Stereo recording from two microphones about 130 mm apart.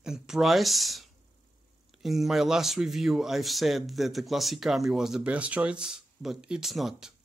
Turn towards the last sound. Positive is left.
turn(degrees=0)  # may be behind; listen again after turning